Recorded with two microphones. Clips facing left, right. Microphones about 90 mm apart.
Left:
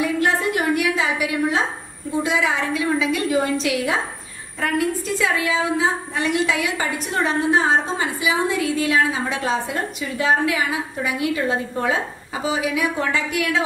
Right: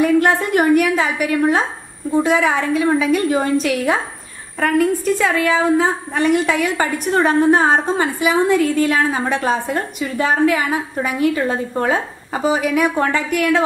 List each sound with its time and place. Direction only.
0.0 s a woman's voice: 50° right (ahead or behind)